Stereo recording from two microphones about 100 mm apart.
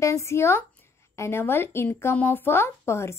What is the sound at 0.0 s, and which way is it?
A woman's voice, 30° left (ahead or behind).